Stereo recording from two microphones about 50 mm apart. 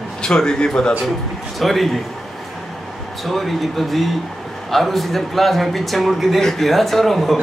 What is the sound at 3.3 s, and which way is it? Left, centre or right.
A man's voice, centre.